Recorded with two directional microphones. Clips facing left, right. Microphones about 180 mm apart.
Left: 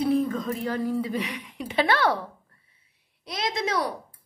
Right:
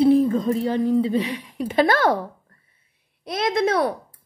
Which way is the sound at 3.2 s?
55° right (ahead or behind).